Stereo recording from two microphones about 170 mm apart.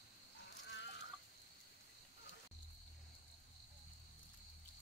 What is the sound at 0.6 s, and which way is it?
Fowl, 90° left.